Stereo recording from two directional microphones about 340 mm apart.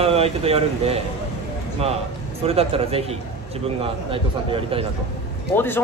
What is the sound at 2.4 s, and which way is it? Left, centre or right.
A man's voice, centre.